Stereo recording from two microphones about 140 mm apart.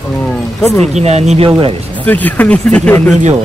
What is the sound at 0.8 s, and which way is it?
Speech, 50° right (ahead or behind).